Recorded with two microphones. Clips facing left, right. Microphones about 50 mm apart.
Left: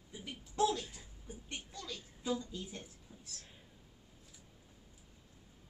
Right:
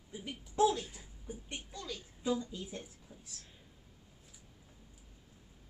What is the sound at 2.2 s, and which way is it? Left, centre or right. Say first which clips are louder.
Speech: right 3 dB; centre.